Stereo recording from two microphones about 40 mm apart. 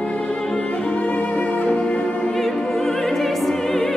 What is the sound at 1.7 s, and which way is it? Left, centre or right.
Music, left.